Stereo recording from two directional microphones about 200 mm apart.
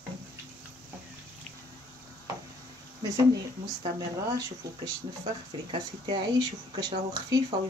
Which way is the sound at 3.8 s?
20° right (ahead or behind).